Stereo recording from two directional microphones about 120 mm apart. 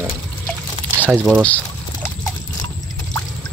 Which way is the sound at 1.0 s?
5° right (ahead or behind).